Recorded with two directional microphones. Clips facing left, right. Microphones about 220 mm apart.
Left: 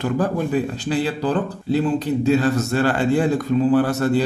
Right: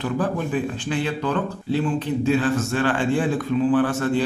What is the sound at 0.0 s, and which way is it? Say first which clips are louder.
Speech: left 3 dB; 40° left (ahead or behind).